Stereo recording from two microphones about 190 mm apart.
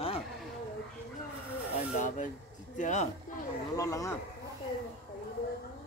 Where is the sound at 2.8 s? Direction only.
40° left (ahead or behind).